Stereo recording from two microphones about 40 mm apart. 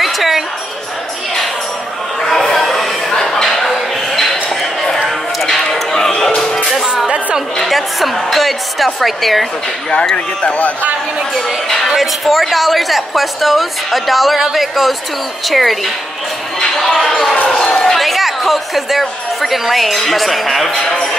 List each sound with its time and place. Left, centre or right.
0.0 s basketball bounce: centre
2.2 s a sound: centre
5.0 s music: centre
7.6 s a woman's voice: centre
10.1 s speech: left
11.9 s a woman's voice: centre
16.5 s a sound: centre
17.9 s a woman's voice: centre